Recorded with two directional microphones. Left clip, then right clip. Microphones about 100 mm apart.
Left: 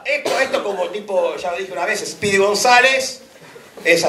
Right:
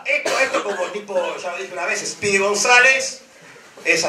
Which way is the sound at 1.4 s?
45° right (ahead or behind).